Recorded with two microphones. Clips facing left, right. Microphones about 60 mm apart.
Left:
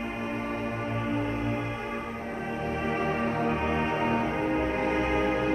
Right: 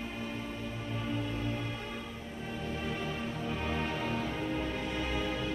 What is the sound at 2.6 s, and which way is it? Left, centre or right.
Music, left.